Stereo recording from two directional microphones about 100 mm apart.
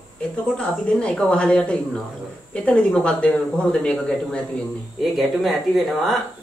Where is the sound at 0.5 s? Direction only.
10° left (ahead or behind).